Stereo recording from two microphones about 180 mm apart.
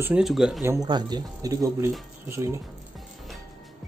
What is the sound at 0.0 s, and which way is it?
Speech, 5° right (ahead or behind).